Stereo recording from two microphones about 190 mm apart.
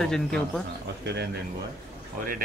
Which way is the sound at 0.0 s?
5° left (ahead or behind).